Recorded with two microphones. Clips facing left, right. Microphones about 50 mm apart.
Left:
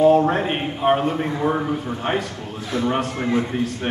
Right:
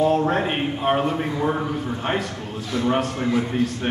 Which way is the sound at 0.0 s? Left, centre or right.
Centre.